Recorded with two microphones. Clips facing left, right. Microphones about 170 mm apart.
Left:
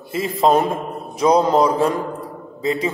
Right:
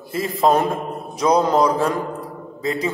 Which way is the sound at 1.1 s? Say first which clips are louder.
Left 2 dB; 30° left (ahead or behind).